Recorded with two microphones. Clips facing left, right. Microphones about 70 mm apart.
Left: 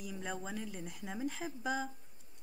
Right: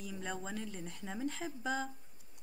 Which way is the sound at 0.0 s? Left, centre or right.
Centre.